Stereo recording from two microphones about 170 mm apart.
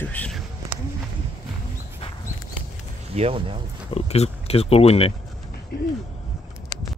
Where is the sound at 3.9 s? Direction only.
40° left (ahead or behind).